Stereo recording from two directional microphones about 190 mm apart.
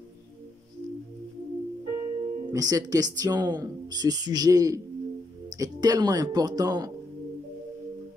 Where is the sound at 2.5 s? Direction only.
20° right (ahead or behind).